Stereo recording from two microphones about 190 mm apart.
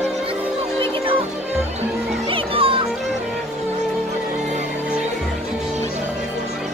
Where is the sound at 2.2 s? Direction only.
30° right (ahead or behind).